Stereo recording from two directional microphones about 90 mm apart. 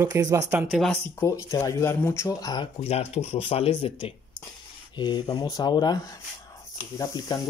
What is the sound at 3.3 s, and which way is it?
Speech, 90° left.